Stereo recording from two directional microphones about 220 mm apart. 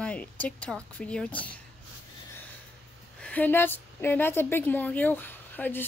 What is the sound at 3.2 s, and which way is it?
A woman's voice, 5° left (ahead or behind).